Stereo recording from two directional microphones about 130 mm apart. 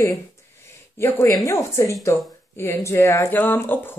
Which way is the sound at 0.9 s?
20° left (ahead or behind).